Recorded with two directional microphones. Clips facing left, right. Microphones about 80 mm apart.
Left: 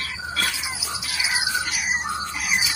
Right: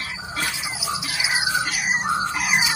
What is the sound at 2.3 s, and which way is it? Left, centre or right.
Music, right.